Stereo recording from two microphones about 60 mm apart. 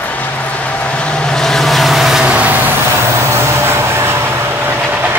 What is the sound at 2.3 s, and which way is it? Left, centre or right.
Vehicle, right.